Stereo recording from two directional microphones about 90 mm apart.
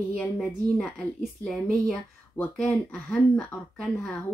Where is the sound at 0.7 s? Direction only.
5° left (ahead or behind).